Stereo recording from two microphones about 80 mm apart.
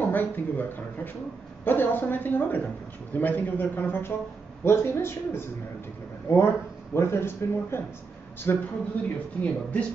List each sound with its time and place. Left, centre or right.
0.0 s a woman's voice: left
9.0 s a woman's voice: left